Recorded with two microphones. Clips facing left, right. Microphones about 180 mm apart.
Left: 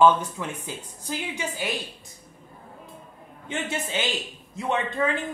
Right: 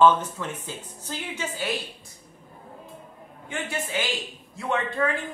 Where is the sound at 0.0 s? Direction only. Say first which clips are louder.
Even; 10° left (ahead or behind).